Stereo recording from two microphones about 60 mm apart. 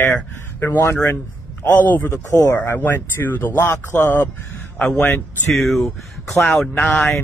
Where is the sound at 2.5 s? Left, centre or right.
Left.